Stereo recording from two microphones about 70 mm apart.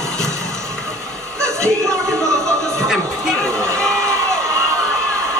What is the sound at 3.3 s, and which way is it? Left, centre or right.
Crowd, right.